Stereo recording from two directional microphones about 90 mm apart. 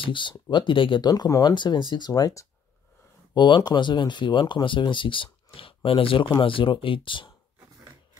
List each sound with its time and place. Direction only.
0.0 s speech: 65° left (ahead or behind)
1.0 s speech: 45° left (ahead or behind)
3.3 s speech: 55° left (ahead or behind)